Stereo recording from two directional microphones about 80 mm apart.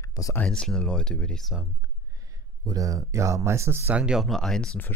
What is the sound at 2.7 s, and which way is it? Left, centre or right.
Speech, right.